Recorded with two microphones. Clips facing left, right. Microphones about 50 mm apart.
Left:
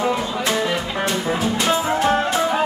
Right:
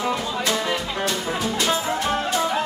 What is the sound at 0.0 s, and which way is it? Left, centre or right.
Music, centre.